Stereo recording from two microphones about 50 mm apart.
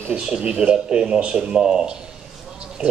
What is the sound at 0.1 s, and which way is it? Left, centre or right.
A man's voice, centre.